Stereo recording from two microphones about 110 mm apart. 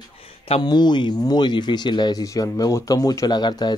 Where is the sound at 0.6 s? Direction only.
40° left (ahead or behind).